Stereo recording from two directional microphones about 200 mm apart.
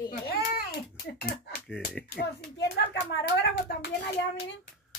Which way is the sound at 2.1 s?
55° left (ahead or behind).